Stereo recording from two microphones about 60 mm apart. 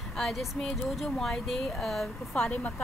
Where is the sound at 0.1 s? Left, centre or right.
Centre.